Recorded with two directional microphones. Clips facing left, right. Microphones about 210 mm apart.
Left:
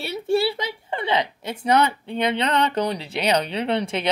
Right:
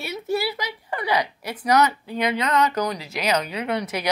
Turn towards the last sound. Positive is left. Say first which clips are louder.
# left 3 dB
turn(degrees=30)  # may be behind; listen again after turning